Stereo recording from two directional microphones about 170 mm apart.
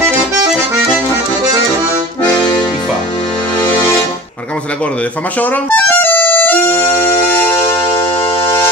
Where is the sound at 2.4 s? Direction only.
25° left (ahead or behind).